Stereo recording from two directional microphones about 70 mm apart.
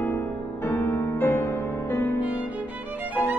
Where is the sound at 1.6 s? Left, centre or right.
Left.